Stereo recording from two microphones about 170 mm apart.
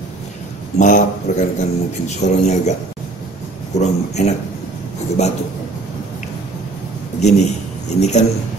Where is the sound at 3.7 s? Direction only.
45° left (ahead or behind).